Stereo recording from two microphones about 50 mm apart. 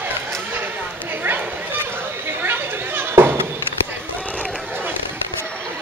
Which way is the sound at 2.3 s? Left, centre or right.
Right.